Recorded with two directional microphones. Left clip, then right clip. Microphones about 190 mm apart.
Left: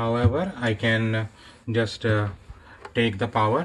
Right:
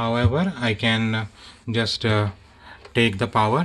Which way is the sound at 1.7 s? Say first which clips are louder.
Right 2 dB; 55° right (ahead or behind).